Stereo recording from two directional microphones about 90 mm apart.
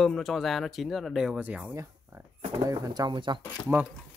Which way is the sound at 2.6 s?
45° right (ahead or behind).